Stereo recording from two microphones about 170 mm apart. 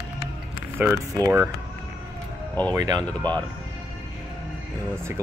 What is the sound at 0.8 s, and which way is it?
Speech, 15° right (ahead or behind).